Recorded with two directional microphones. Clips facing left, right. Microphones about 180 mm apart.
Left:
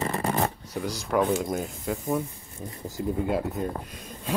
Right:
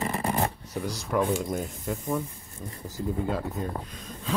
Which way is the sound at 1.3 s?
Centre (ahead or behind).